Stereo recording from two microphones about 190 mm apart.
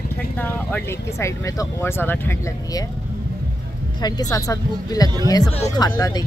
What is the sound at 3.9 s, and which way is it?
A woman's voice, 20° left (ahead or behind).